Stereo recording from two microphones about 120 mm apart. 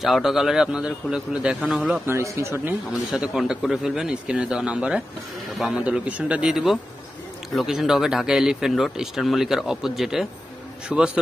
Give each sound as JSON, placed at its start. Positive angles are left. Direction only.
{"t": 0.0, "sound": "speech", "side_deg": 0}
{"t": 2.0, "sound": "speech", "side_deg": -20}
{"t": 2.9, "sound": "speech", "side_deg": -5}